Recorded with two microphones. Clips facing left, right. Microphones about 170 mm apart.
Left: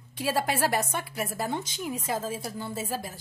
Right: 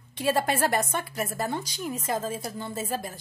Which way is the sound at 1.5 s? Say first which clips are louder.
Even; 20° left (ahead or behind).